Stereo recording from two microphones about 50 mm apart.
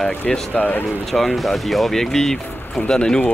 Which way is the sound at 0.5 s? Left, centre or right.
Left.